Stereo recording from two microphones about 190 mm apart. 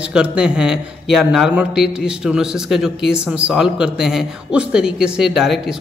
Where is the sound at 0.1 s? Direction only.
5° right (ahead or behind).